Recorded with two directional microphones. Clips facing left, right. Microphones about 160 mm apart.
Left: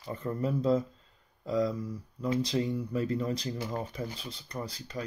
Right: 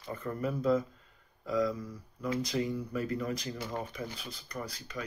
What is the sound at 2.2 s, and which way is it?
Speech, 30° left (ahead or behind).